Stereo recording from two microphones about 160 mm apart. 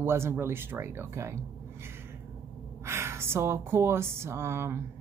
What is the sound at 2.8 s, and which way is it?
Speech, 15° right (ahead or behind).